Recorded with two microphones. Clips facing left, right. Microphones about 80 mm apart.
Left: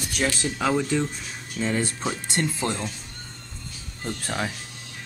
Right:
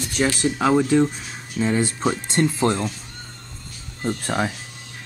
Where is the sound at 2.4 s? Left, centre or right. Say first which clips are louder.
Right 8 dB; right.